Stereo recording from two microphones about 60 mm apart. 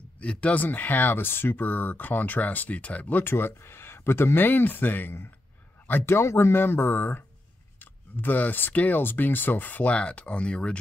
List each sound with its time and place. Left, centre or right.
0.2 s speech: left
6.0 s speech: left; by 10.8 s centre